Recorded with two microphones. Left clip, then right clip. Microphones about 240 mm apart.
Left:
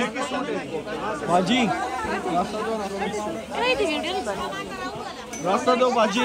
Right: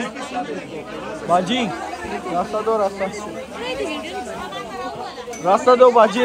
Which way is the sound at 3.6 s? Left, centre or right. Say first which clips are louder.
Left 4 dB; centre.